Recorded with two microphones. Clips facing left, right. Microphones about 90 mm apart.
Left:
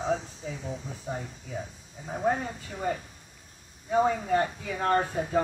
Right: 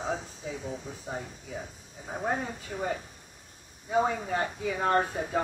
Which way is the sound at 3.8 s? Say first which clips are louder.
Left 2 dB; 5° right (ahead or behind).